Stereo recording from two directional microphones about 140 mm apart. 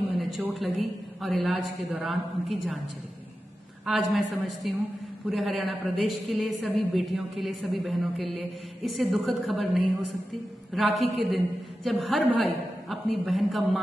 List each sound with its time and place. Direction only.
0.1 s a sound: centre (ahead or behind)
0.6 s a woman's voice: centre (ahead or behind)
3.8 s a woman's voice: centre (ahead or behind)